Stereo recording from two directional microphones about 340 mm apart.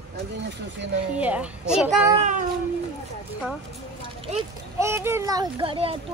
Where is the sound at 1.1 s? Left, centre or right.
Centre.